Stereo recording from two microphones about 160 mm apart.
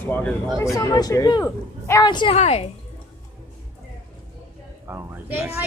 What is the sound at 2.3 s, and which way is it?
Speech, 40° left (ahead or behind).